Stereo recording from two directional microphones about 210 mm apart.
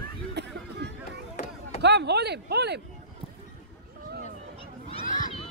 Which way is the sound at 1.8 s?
55° right (ahead or behind).